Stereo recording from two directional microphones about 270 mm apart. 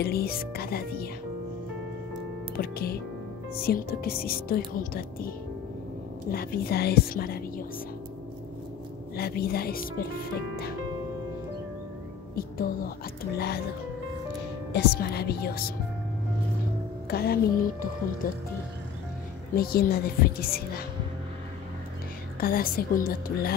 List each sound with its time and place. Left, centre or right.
0.0 s speech: left
2.5 s speech: left
6.3 s speech: left
9.1 s speech: left
12.4 s speech: left
14.7 s speech: left
17.1 s speech: left
19.5 s speech: left
22.4 s speech: left